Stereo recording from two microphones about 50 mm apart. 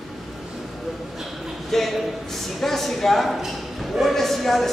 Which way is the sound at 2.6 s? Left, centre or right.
Centre.